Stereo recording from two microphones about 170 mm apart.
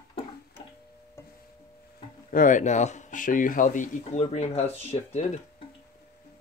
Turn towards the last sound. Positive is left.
turn(degrees=40)  # may be behind; listen again after turning